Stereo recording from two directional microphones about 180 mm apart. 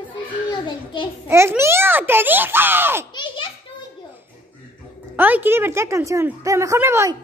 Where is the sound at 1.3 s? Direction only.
15° right (ahead or behind).